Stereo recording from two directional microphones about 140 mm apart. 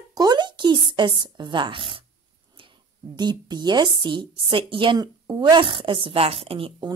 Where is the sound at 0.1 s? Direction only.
30° right (ahead or behind).